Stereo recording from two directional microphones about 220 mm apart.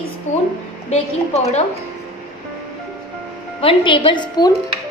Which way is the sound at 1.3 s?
30° left (ahead or behind).